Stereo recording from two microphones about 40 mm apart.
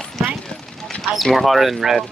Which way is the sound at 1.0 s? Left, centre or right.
Centre.